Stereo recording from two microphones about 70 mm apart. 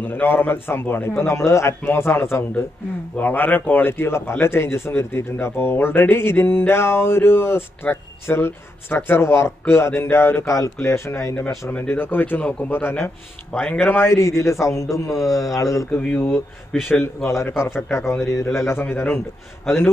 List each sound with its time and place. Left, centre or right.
0.0 s speech: left
3.2 s speech: left
10.5 s speech: left
13.5 s speech: centre
13.7 s speech: left
14.1 s a man's voice: left
15.9 s speech: left